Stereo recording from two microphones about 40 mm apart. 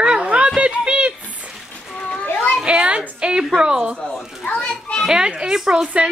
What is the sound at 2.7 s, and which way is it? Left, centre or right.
A woman's voice, right.